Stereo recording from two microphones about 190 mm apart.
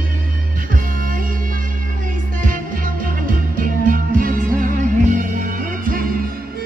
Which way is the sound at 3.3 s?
45° right (ahead or behind).